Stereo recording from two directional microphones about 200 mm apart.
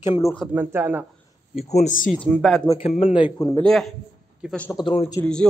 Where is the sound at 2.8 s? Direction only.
30° left (ahead or behind).